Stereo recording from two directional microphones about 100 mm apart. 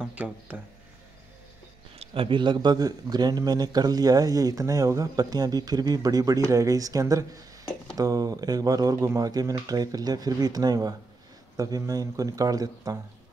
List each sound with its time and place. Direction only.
0.0 s speech: 15° right (ahead or behind)
2.0 s a man's voice: 60° right (ahead or behind); by 13.0 s 40° right (ahead or behind)